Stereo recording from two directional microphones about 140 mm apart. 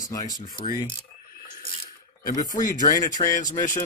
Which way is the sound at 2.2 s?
75° left (ahead or behind).